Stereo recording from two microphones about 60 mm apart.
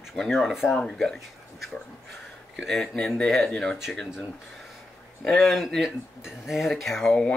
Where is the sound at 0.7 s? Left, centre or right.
Centre.